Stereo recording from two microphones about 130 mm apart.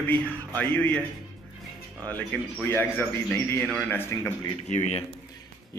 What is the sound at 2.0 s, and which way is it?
Speech, 15° left (ahead or behind).